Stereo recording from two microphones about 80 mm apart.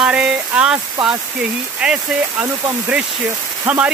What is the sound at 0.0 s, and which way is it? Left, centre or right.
Speech, centre.